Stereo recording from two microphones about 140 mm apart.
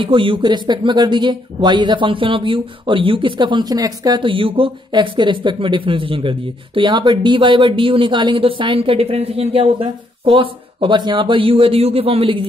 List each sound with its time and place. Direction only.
0.0 s speech: 40° right (ahead or behind)